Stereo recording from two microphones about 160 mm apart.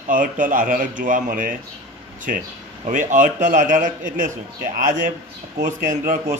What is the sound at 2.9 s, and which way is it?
A man's voice, 55° right (ahead or behind).